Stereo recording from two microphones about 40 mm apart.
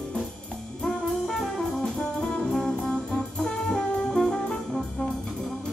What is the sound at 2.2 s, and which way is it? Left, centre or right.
Brass instrument, left.